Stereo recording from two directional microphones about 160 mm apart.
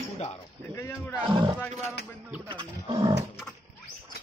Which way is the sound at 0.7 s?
20° left (ahead or behind).